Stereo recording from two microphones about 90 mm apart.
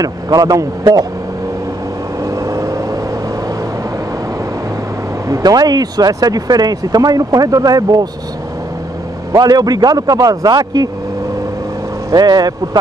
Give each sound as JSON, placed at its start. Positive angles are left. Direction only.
{"t": 0.0, "sound": "speech", "side_deg": -45}
{"t": 2.3, "sound": "vehicle", "side_deg": -35}
{"t": 5.3, "sound": "speech", "side_deg": -45}
{"t": 9.3, "sound": "speech", "side_deg": -45}
{"t": 12.1, "sound": "speech", "side_deg": -50}